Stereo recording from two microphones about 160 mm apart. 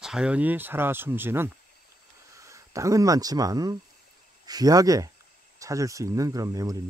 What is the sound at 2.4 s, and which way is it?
Speech, 20° right (ahead or behind).